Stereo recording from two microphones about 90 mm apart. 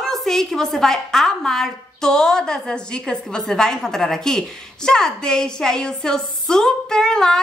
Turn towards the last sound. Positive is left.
turn(degrees=5)  # may be behind; listen again after turning